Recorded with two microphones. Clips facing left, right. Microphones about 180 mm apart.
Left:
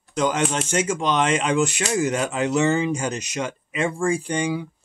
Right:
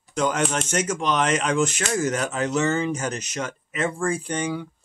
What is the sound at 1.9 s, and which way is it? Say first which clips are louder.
Speech: left 2 dB; 15° left (ahead or behind).